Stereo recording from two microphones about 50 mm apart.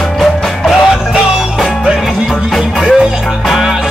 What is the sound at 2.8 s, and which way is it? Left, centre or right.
Music, centre.